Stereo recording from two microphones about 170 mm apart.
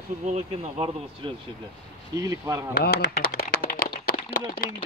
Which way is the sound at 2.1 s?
20° right (ahead or behind).